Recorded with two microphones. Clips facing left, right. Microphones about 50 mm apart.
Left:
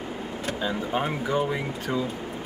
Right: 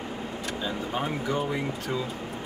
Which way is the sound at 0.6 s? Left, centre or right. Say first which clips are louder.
Left 4 dB; centre.